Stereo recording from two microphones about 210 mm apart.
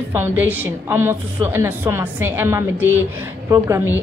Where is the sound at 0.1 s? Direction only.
10° right (ahead or behind).